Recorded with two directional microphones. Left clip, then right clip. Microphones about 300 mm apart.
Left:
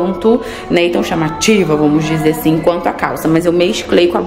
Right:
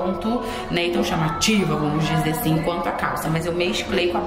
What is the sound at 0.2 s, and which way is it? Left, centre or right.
A woman's voice, centre.